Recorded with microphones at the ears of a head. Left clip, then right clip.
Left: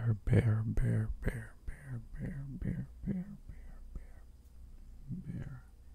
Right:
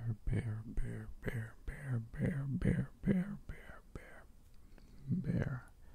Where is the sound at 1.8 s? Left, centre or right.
Right.